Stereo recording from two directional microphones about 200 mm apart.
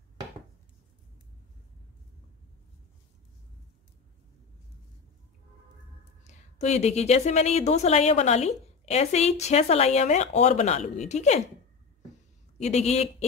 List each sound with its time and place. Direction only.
6.2 s a woman's voice: 35° left (ahead or behind)
12.5 s a woman's voice: 35° left (ahead or behind)